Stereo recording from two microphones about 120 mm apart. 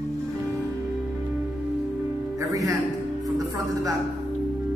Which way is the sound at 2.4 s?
30° right (ahead or behind).